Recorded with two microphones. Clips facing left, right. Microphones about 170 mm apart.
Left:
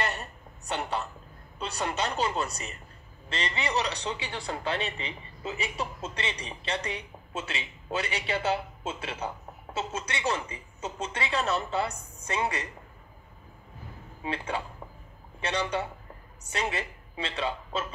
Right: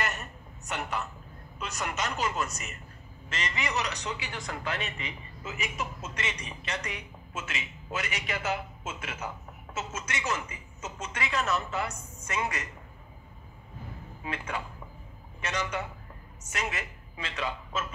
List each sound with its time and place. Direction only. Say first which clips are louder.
0.0 s a sound: left 2 dB; 30° left (ahead or behind)
1.6 s speech: left 3 dB; 30° left (ahead or behind)
14.2 s a woman's voice: left 3 dB; 30° left (ahead or behind)